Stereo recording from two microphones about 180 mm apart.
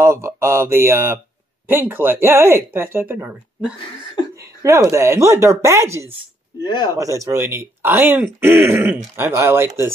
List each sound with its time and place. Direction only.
0.0 s speech: 15° right (ahead or behind)
6.6 s speech: 25° left (ahead or behind)
7.0 s speech: 15° right (ahead or behind)